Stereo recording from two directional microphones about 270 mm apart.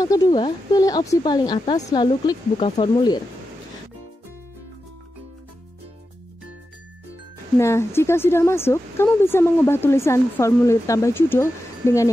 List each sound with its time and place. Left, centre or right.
0.0 s speech: centre
7.5 s speech: centre